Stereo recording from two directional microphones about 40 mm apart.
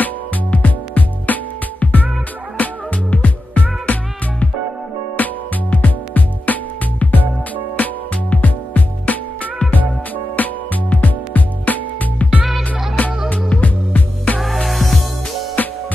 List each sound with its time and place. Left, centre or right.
0.0 s music: left
5.1 s music: left
10.3 s music: left
14.6 s music: centre